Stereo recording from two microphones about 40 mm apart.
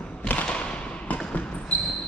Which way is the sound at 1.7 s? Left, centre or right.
Left.